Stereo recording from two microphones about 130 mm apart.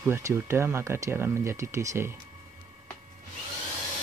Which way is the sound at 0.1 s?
20° right (ahead or behind).